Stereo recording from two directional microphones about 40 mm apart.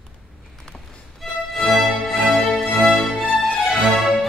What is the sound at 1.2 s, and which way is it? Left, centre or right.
Music, centre.